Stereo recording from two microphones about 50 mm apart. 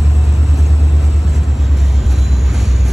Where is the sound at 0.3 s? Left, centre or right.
Centre.